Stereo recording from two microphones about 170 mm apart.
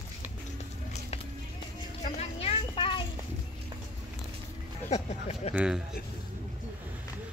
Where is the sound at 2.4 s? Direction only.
30° left (ahead or behind).